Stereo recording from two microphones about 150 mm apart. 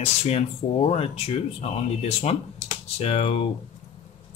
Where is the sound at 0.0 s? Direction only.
45° left (ahead or behind).